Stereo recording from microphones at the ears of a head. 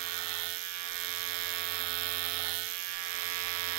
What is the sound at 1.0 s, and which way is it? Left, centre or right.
Electric toothbrush, right.